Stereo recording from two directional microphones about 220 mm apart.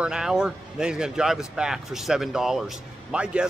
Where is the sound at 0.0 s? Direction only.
5° right (ahead or behind).